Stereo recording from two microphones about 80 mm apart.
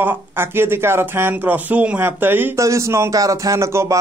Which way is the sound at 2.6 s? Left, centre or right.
Right.